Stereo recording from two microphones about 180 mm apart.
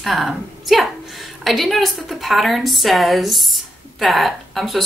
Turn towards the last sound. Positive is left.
turn(degrees=0)  # may be behind; listen again after turning